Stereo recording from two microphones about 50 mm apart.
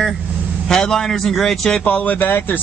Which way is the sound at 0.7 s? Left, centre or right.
Centre.